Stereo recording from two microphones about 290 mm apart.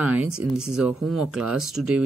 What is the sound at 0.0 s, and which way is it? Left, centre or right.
Speech, centre.